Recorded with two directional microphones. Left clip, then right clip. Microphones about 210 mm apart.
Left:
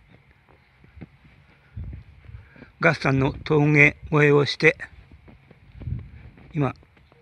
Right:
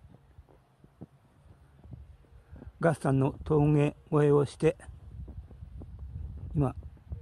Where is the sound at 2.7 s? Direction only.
5° right (ahead or behind).